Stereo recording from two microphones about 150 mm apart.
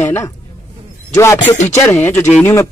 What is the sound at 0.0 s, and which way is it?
A man's voice, 20° left (ahead or behind).